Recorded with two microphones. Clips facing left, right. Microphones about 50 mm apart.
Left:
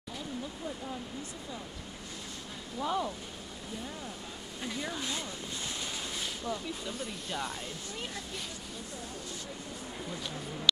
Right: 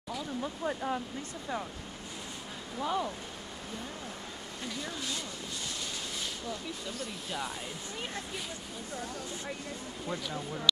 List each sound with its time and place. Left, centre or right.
0.4 s speech: right
2.8 s speech: centre
4.8 s speech: left
7.2 s speech: centre